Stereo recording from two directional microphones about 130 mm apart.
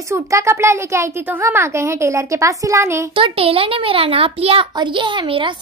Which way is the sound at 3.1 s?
45° right (ahead or behind).